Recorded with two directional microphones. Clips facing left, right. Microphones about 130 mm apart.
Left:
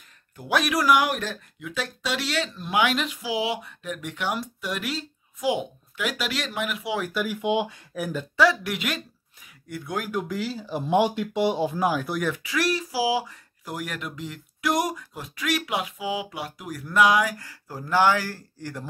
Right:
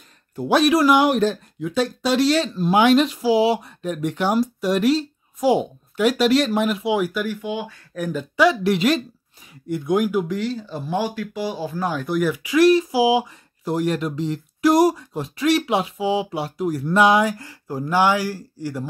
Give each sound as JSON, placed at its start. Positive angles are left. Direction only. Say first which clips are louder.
{"t": 0.4, "sound": "speech", "louder": "right 8 dB", "side_deg": -30}
{"t": 6.8, "sound": "speech", "louder": "right 8 dB", "side_deg": -20}
{"t": 7.4, "sound": "speech", "louder": "left 3 dB", "side_deg": 20}
{"t": 7.9, "sound": "speech", "louder": "right 8 dB", "side_deg": 5}
{"t": 8.6, "sound": "speech", "louder": "right 11 dB", "side_deg": -30}
{"t": 10.2, "sound": "speech", "louder": "right 5 dB", "side_deg": 5}
{"t": 10.8, "sound": "speech", "louder": "left 4 dB", "side_deg": 20}
{"t": 11.9, "sound": "speech", "louder": "right 5 dB", "side_deg": 0}
{"t": 12.4, "sound": "speech", "louder": "right 11 dB", "side_deg": -20}